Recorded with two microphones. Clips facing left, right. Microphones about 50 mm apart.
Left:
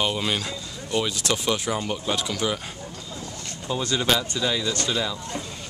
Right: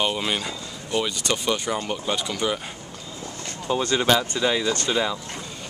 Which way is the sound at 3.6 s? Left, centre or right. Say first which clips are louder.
Right 3 dB; centre.